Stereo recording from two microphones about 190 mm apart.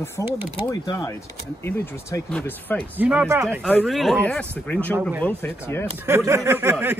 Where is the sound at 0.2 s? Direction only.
15° left (ahead or behind).